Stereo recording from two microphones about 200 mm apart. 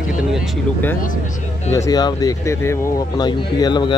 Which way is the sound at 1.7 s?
15° left (ahead or behind).